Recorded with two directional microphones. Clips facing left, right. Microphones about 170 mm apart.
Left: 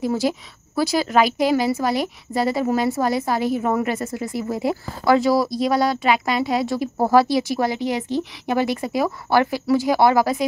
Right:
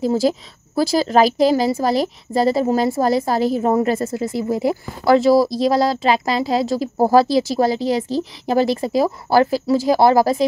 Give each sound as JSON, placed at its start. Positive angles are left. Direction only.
{"t": 0.0, "sound": "a woman's voice", "side_deg": -30}